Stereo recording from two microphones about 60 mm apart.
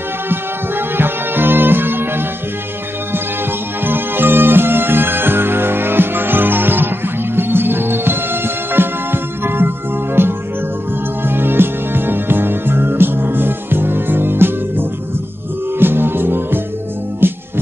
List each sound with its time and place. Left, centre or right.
0.3 s music: right
3.8 s music: right